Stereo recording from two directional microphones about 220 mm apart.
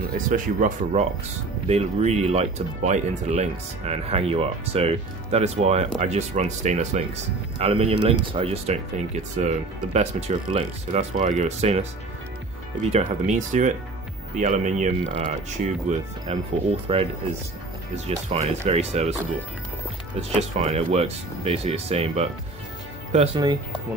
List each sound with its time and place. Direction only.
0.3 s speech: 35° right (ahead or behind)
12.9 s speech: 35° right (ahead or behind)
20.2 s speech: 30° right (ahead or behind)